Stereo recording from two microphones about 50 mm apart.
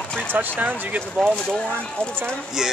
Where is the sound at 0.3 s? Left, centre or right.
Right.